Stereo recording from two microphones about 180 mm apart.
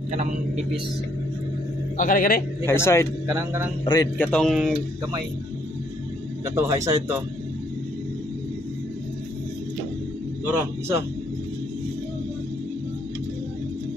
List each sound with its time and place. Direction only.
0.1 s a man's voice: 40° right (ahead or behind)
2.0 s a man's voice: 50° left (ahead or behind)
2.6 s a man's voice: 15° left (ahead or behind)
3.3 s a man's voice: 15° right (ahead or behind)
3.8 s a man's voice: 25° left (ahead or behind)
4.2 s speech: 5° left (ahead or behind)
6.4 s a man's voice: 20° right (ahead or behind)